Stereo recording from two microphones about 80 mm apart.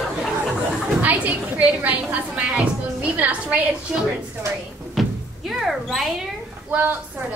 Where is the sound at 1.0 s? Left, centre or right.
Centre.